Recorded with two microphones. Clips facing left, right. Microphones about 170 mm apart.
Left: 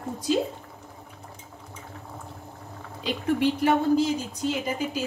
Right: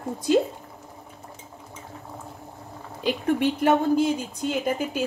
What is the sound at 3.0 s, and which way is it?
Speech, 55° right (ahead or behind).